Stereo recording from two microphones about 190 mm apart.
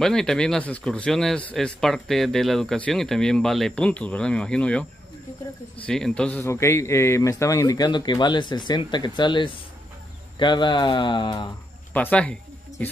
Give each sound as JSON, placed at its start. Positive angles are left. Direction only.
{"t": 0.0, "sound": "speech", "side_deg": 5}
{"t": 5.9, "sound": "speech", "side_deg": 5}
{"t": 11.9, "sound": "a sound", "side_deg": 5}